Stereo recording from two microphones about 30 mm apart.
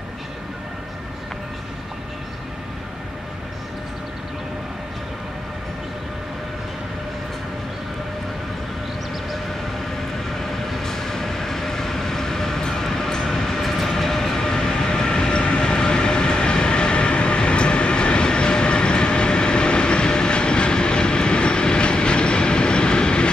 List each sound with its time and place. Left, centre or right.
10.7 s train: centre; by 23.3 s left